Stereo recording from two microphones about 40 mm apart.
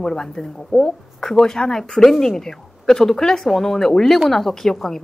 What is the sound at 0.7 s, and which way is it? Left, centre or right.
A woman's voice, centre.